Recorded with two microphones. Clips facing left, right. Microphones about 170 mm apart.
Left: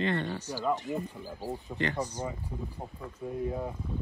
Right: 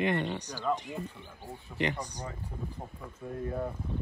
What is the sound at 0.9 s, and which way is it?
Speech, 20° left (ahead or behind).